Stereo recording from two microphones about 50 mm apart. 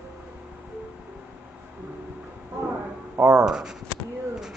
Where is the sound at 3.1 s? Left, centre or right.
Right.